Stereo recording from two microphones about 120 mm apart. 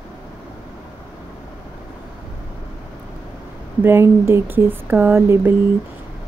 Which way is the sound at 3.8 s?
20° right (ahead or behind).